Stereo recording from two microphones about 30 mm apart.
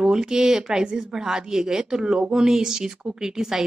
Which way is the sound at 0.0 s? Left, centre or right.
Right.